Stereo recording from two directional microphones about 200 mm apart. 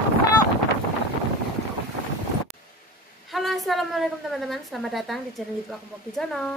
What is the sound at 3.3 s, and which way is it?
A woman's voice, centre (ahead or behind).